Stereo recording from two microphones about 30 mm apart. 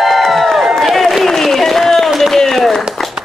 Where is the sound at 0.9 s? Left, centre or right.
Centre.